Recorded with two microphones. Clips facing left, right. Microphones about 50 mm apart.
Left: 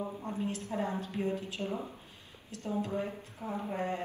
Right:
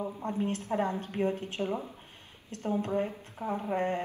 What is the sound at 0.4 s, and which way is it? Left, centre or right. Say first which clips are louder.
A woman's voice: right 5 dB; right.